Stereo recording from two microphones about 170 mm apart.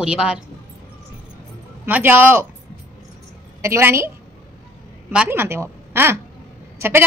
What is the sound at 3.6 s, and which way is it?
Speech, 15° right (ahead or behind).